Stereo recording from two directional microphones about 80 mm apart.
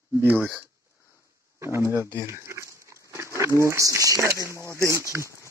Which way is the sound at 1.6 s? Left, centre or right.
Right.